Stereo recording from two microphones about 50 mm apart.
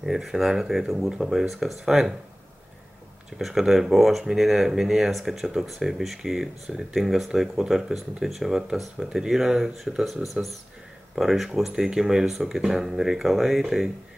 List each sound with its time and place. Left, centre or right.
0.0 s speech: centre
3.3 s speech: centre